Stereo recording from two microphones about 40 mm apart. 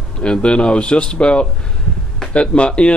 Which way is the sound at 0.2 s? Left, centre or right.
Left.